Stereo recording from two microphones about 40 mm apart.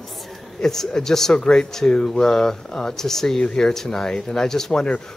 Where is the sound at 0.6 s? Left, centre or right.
Centre.